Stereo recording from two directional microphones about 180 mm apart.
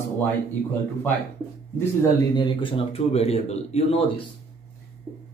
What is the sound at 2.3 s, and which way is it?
Speech, 25° left (ahead or behind).